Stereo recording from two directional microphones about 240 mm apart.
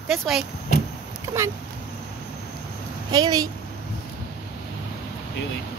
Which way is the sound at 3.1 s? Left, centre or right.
Centre.